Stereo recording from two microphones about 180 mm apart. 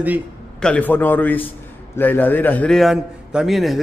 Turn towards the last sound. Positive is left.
turn(degrees=0)  # may be behind; listen again after turning